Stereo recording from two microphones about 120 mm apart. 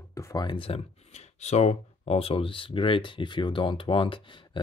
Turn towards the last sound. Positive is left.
turn(degrees=45)  # may be behind; listen again after turning